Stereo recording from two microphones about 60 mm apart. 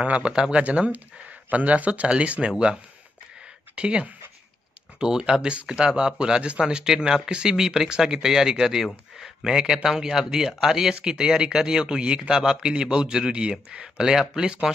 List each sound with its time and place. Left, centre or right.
0.0 s speech: centre
3.7 s speech: centre